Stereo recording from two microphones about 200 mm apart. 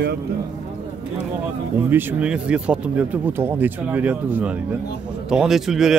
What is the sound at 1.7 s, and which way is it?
Speech, 10° right (ahead or behind).